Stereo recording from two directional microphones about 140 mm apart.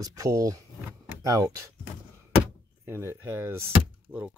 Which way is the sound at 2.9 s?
20° right (ahead or behind).